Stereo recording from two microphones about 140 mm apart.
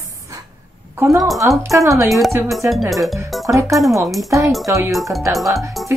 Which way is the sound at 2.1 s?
Centre (ahead or behind).